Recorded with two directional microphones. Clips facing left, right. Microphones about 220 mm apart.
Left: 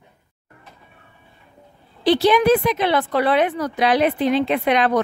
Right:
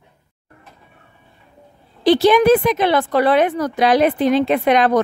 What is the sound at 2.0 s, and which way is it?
A woman's voice, 45° right (ahead or behind).